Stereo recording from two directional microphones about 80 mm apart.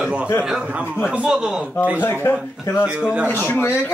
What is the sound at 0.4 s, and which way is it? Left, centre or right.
Speech, centre.